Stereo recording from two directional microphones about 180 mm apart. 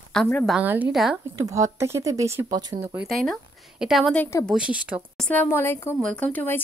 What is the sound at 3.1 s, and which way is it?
Speech, centre (ahead or behind).